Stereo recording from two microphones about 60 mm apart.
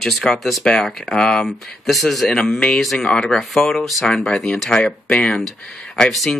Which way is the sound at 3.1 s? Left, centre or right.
Centre.